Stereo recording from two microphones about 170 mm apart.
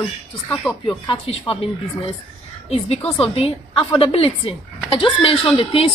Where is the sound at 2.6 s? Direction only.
35° left (ahead or behind).